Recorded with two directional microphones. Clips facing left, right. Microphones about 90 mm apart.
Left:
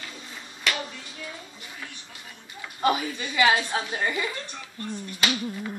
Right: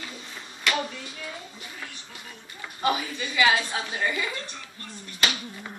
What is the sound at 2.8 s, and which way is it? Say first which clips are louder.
A woman's voice: left 2 dB; 30° left (ahead or behind).